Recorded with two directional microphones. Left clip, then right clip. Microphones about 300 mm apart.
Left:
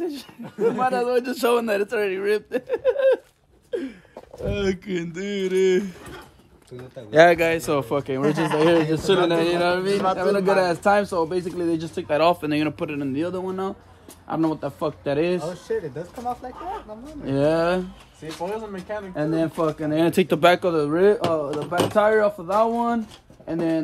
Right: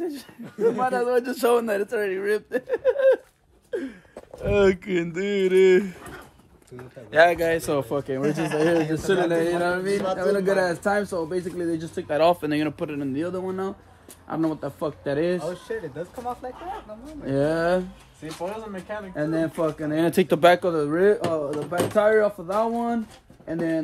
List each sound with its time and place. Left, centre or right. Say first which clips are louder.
0.6 s a man's voice: left 1 dB; centre
4.5 s a man's voice: right 6 dB; centre
7.4 s a man's voice: left 1 dB; centre
8.2 s speech: left 4 dB; left
8.6 s a man's voice: left 3 dB; centre
15.7 s speech: left 4 dB; left
17.3 s a man's voice: left 2 dB; centre
18.4 s speech: left 3 dB; left
19.1 s a man's voice: left 2 dB; centre